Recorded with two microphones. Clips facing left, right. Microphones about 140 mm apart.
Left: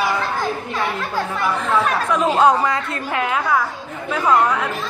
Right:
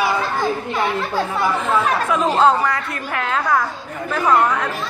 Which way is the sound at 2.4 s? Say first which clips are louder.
Left 1 dB; 15° left (ahead or behind).